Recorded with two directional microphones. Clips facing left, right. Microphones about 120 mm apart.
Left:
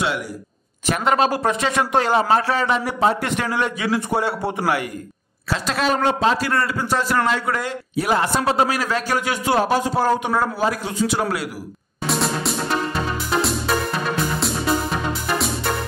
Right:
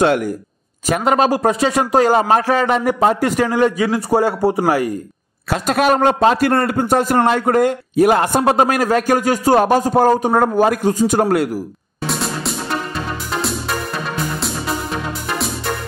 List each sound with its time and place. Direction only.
0.0 s a man's voice: 50° right (ahead or behind)
0.8 s speech: 40° right (ahead or behind)
5.5 s a woman's voice: 55° right (ahead or behind)
12.1 s music: centre (ahead or behind)
15.2 s music: centre (ahead or behind)